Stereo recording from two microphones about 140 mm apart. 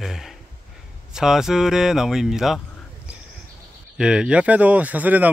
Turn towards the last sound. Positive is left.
turn(degrees=-10)  # may be behind; listen again after turning